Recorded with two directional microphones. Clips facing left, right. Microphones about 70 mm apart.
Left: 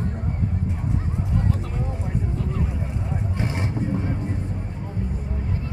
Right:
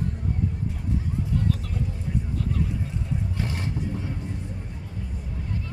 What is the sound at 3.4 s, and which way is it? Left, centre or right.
Vehicle, left.